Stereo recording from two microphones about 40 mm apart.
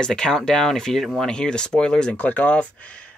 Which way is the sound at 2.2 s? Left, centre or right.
Left.